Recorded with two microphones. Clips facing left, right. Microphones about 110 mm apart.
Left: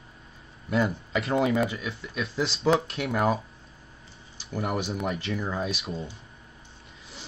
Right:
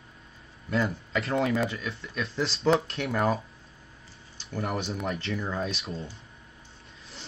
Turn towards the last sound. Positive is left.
turn(degrees=5)  # may be behind; listen again after turning